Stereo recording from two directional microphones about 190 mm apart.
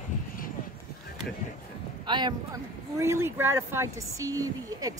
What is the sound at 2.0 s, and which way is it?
Speech, 25° right (ahead or behind).